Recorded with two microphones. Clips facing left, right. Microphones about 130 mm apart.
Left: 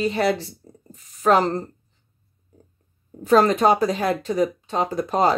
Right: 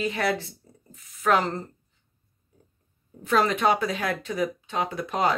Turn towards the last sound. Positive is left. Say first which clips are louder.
# left 5 dB
turn(degrees=35)  # may be behind; listen again after turning